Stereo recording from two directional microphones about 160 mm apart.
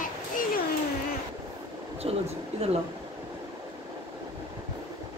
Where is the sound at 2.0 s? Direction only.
40° right (ahead or behind).